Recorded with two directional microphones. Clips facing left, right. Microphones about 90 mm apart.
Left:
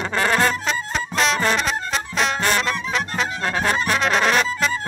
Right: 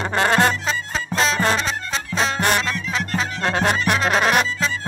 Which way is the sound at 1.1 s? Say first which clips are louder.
Right 1 dB; 35° right (ahead or behind).